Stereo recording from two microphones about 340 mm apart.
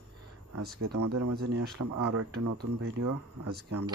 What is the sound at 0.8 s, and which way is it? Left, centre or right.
Speech, right.